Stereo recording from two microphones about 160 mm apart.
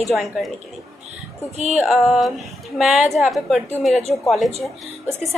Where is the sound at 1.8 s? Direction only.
Centre (ahead or behind).